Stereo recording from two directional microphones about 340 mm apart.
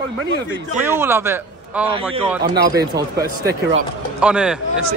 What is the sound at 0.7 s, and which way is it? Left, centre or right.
A man's voice, centre.